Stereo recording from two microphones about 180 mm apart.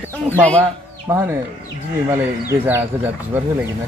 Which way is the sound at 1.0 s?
15° right (ahead or behind).